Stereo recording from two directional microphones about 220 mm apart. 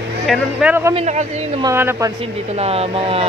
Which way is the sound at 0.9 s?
30° right (ahead or behind).